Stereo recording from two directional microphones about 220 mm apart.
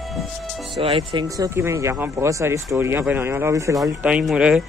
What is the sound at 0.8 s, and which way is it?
A man's voice, 25° right (ahead or behind).